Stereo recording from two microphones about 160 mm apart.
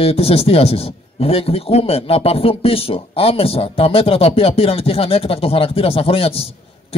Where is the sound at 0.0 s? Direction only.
40° left (ahead or behind).